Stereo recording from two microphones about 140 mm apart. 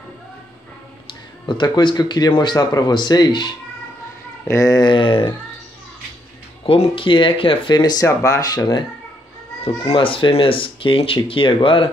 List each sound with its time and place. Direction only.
1.4 s speech: 35° left (ahead or behind)
6.6 s speech: 40° left (ahead or behind)
9.8 s speech: 40° left (ahead or behind)